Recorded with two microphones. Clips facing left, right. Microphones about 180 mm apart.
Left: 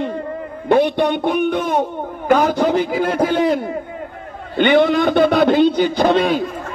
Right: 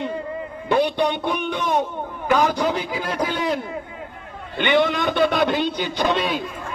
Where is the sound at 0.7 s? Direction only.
55° left (ahead or behind).